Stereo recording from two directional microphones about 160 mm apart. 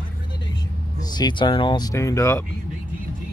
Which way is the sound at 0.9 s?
25° left (ahead or behind).